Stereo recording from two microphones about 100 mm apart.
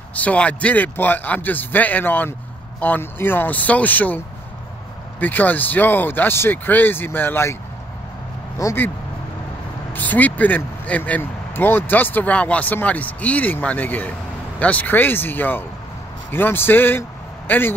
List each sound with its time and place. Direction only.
0.1 s speech: 15° left (ahead or behind)
5.2 s speech: 15° left (ahead or behind)
8.6 s speech: 35° left (ahead or behind)
9.9 s speech: 15° left (ahead or behind)